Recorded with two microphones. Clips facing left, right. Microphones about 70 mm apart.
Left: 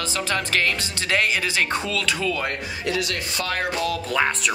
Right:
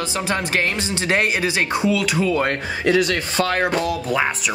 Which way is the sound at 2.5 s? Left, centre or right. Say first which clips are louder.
Right 7 dB; right.